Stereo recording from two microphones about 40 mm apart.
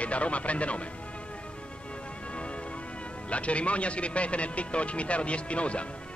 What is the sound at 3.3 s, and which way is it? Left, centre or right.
Speech, left.